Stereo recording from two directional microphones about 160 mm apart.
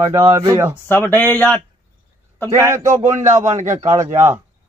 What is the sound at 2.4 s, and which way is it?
Speech, 20° right (ahead or behind).